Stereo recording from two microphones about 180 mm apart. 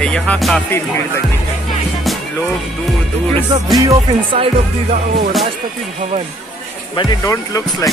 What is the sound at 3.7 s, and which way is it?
Speech, 20° right (ahead or behind).